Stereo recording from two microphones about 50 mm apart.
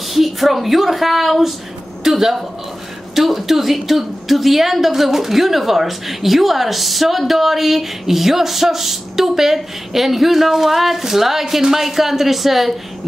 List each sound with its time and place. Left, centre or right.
0.1 s a woman's voice: centre